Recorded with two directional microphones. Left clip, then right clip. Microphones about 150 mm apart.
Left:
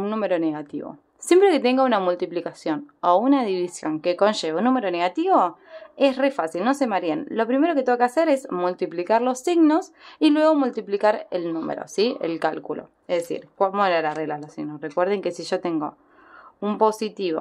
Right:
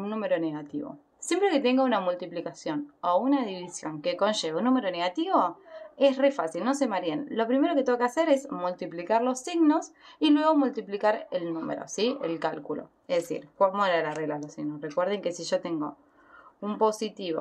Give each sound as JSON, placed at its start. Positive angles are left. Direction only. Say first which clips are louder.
{"t": 0.0, "sound": "speech", "louder": "left 5 dB", "side_deg": 40}